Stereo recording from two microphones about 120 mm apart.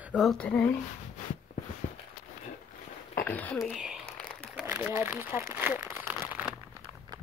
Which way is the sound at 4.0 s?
10° left (ahead or behind).